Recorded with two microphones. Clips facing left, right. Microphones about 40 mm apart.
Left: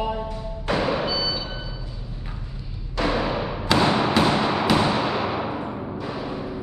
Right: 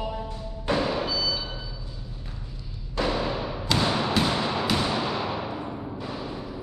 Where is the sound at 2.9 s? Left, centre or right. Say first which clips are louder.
Left 3 dB; left.